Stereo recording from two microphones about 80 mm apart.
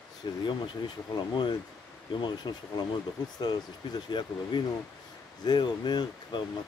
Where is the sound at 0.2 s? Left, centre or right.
Left.